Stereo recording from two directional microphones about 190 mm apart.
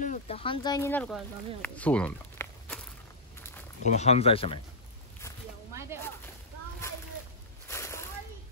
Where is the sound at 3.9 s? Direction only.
35° left (ahead or behind).